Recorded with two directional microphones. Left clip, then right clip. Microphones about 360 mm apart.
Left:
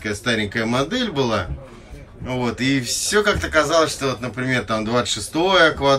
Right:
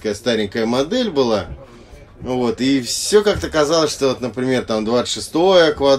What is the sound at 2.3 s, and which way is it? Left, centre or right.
A man's voice, centre.